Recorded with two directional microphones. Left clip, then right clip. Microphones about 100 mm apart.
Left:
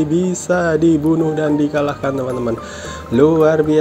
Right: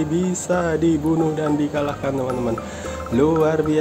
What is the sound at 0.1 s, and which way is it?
Music, 30° left (ahead or behind).